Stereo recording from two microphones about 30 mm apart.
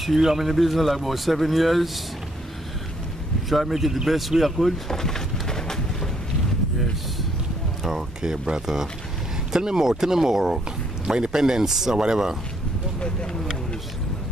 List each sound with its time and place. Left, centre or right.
0.2 s speech: centre
3.4 s speech: centre
4.8 s a sound: centre
7.8 s speech: centre
9.5 s speech: right